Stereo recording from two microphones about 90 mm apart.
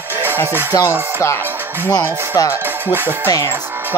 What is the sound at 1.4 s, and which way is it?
Speech, 25° right (ahead or behind).